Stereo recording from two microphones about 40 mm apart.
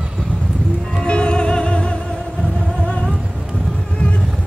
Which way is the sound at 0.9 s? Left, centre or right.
Left.